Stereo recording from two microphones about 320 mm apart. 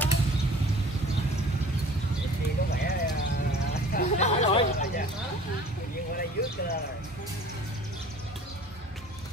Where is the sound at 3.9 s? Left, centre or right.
Left.